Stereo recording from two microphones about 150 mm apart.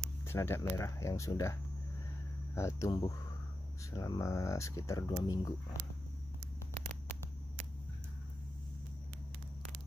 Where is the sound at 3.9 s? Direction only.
20° left (ahead or behind).